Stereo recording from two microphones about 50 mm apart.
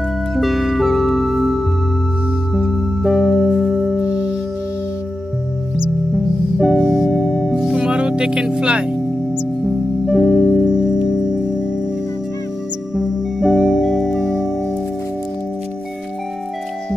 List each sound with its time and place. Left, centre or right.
0.4 s music: centre
6.1 s music: centre
7.6 s music: centre
9.7 s music: centre
10.7 s music: centre
12.9 s music: centre